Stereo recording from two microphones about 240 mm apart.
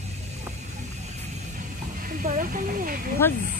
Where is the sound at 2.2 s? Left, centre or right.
Right.